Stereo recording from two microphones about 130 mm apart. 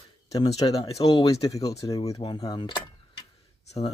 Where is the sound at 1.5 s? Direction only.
25° left (ahead or behind).